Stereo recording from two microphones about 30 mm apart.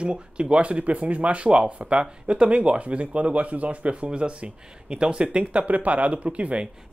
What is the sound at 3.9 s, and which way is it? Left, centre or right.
Speech, right.